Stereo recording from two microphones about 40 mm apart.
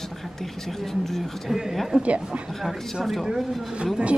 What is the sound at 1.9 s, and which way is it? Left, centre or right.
Speech, centre.